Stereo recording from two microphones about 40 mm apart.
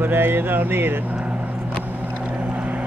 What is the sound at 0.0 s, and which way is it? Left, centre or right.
Speech, right.